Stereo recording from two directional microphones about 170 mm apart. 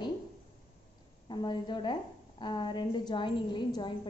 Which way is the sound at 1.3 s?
25° left (ahead or behind).